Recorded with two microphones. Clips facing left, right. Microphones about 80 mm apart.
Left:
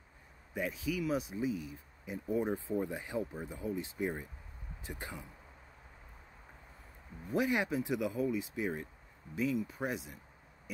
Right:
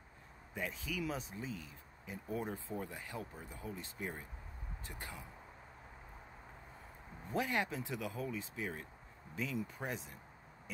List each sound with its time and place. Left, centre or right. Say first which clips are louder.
0.6 s speech: left 5 dB; centre
7.2 s speech: left 4 dB; centre
9.3 s speech: left 7 dB; centre